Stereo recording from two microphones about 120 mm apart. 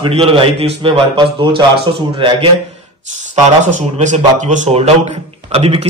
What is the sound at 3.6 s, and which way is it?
Speech, 85° right.